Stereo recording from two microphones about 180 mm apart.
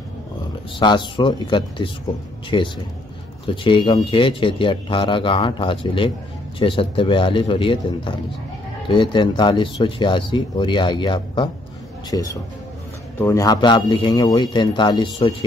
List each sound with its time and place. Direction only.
0.7 s speech: 25° left (ahead or behind)